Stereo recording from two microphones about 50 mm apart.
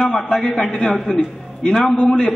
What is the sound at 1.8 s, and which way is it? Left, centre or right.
Speech, left.